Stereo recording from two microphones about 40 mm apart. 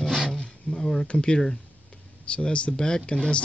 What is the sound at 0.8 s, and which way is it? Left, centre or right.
Speech, centre.